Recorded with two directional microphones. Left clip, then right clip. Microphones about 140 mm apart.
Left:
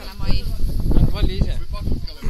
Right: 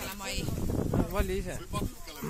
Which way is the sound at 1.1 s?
15° right (ahead or behind).